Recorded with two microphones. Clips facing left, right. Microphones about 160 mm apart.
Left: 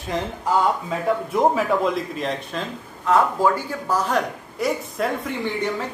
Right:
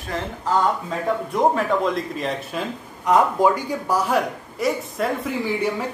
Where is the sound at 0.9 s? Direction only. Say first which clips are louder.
Left 1 dB; 5° left (ahead or behind).